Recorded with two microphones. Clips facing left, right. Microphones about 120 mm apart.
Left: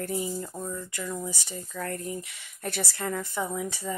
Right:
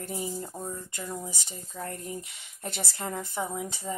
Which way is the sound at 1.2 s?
20° right (ahead or behind).